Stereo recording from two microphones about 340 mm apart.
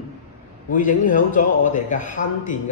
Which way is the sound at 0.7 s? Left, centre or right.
Left.